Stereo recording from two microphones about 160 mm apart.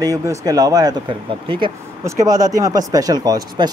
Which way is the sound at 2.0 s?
20° right (ahead or behind).